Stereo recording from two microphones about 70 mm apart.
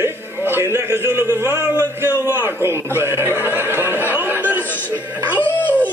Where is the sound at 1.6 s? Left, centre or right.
Right.